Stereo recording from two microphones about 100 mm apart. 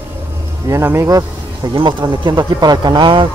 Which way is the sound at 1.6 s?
45° right (ahead or behind).